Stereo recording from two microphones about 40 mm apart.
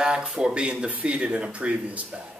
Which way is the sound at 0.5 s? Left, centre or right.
Right.